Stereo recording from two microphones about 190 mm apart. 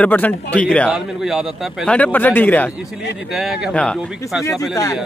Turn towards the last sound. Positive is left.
turn(degrees=20)  # may be behind; listen again after turning